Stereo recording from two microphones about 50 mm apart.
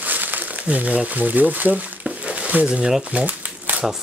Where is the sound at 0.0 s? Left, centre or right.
Right.